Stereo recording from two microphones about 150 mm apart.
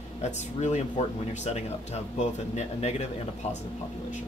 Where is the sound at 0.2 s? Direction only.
50° left (ahead or behind).